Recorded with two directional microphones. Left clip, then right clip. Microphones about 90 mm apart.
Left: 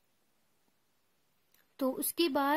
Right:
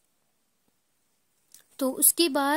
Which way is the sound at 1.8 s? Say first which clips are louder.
Right 6 dB; 40° right (ahead or behind).